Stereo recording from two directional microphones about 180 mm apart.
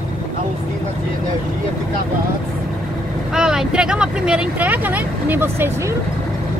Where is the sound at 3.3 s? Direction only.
5° right (ahead or behind).